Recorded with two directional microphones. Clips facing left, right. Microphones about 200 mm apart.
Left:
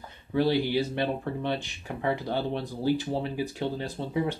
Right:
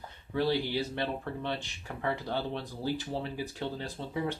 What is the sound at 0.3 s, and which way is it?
Speech, 15° left (ahead or behind).